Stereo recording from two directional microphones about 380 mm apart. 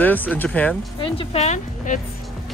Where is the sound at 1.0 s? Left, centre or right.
Centre.